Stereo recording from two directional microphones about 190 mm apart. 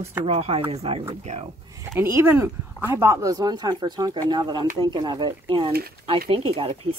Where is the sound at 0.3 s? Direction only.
30° right (ahead or behind).